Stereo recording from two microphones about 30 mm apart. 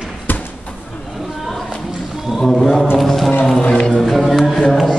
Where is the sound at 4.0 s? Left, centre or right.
Centre.